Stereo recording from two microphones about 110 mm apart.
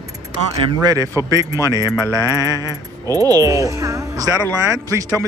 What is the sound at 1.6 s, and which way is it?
Speech, 30° left (ahead or behind).